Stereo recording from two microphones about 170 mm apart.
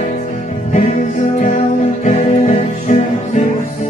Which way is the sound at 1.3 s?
45° left (ahead or behind).